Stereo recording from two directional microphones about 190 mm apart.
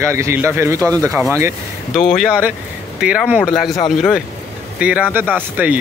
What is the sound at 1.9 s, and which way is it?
Speech, centre (ahead or behind).